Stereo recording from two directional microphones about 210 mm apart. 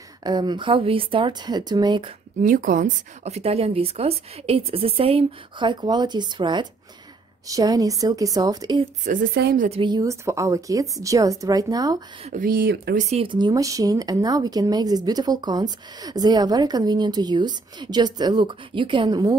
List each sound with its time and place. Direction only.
0.2 s speech: 20° right (ahead or behind)
2.4 s speech: 40° right (ahead or behind); by 8.8 s 20° right (ahead or behind)
9.0 s a woman's voice: 40° right (ahead or behind)
9.7 s speech: 25° right (ahead or behind)
12.3 s speech: 40° right (ahead or behind)
13.1 s speech: 25° right (ahead or behind)